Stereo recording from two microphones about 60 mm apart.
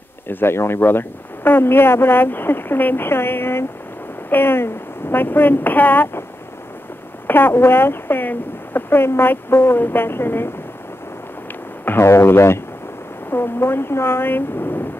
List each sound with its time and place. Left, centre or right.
0.3 s speech: left
7.2 s speech: left
11.8 s speech: left
12.1 s speech: left